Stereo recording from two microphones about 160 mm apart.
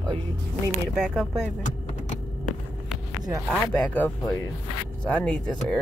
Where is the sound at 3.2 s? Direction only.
20° right (ahead or behind).